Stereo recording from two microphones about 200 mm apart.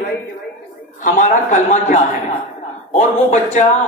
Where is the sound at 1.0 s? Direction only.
40° left (ahead or behind).